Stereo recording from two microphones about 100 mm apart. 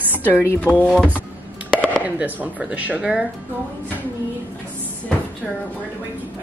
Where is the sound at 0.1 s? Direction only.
25° left (ahead or behind).